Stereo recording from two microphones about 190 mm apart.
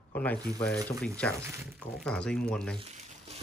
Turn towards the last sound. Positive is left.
turn(degrees=-35)  # may be behind; listen again after turning